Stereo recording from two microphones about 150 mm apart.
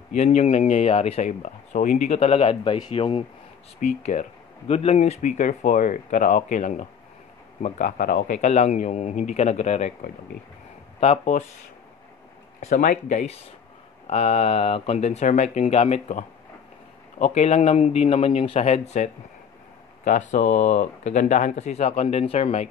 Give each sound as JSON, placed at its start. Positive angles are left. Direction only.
{"t": 0.1, "sound": "speech", "side_deg": 50}
{"t": 3.8, "sound": "speech", "side_deg": 50}
{"t": 11.0, "sound": "speech", "side_deg": 45}
{"t": 12.5, "sound": "speech", "side_deg": 55}
{"t": 20.1, "sound": "speech", "side_deg": 55}